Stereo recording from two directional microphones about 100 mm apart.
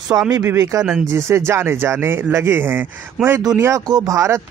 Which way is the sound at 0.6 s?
35° right (ahead or behind).